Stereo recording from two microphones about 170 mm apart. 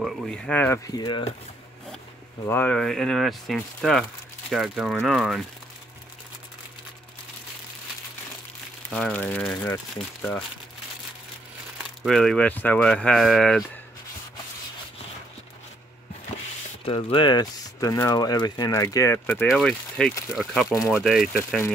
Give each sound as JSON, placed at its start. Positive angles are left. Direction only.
{"t": 0.0, "sound": "speech", "side_deg": 0}
{"t": 0.8, "sound": "speech", "side_deg": 25}
{"t": 2.4, "sound": "speech", "side_deg": 10}
{"t": 8.9, "sound": "speech", "side_deg": 5}
{"t": 11.8, "sound": "speech", "side_deg": 0}
{"t": 16.8, "sound": "speech", "side_deg": 30}